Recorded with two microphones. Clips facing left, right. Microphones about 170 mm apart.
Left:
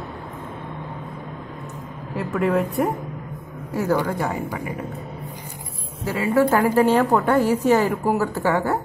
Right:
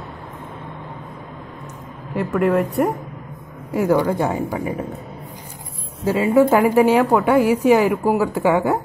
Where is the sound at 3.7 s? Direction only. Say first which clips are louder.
Right 4 dB; 15° right (ahead or behind).